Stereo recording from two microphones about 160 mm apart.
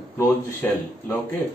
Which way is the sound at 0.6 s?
10° left (ahead or behind).